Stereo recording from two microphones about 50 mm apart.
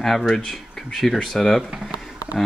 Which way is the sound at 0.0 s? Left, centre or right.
Centre.